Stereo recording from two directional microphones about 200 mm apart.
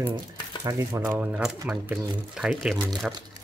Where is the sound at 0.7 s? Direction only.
15° right (ahead or behind).